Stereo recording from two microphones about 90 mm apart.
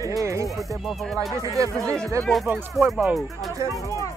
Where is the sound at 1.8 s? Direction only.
10° left (ahead or behind).